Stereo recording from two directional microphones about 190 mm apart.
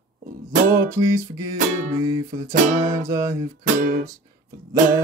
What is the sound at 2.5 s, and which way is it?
Music, 45° right (ahead or behind).